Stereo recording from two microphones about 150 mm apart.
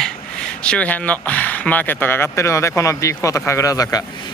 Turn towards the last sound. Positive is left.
turn(degrees=25)  # may be behind; listen again after turning